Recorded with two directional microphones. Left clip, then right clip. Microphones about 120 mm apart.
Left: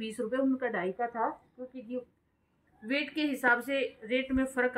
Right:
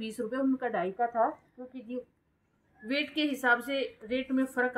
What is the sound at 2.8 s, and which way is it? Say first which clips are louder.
A woman's voice: right 1 dB; 20° right (ahead or behind).